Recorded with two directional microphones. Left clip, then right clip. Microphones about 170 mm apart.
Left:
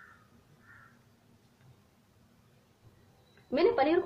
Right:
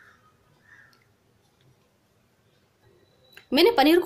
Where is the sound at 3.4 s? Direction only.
50° right (ahead or behind).